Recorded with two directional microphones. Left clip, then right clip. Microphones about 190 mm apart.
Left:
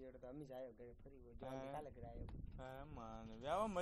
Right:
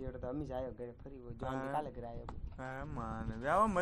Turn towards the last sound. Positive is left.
turn(degrees=40)  # may be behind; listen again after turning